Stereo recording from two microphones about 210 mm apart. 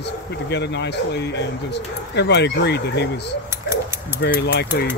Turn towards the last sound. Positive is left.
turn(degrees=50)  # may be behind; listen again after turning